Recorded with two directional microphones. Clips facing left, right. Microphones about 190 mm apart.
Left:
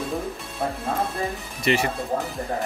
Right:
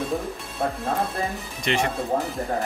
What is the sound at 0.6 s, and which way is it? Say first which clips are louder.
A man's voice: right 1 dB; centre (ahead or behind).